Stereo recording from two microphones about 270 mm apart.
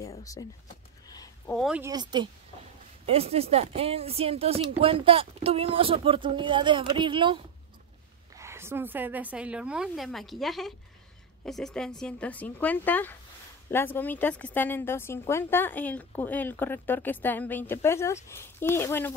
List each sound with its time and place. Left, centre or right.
0.0 s a sound: centre
1.5 s a woman's voice: centre
1.9 s speech: centre
8.4 s a woman's voice: centre